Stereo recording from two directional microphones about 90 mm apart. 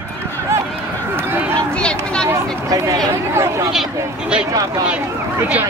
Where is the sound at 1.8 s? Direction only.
10° left (ahead or behind).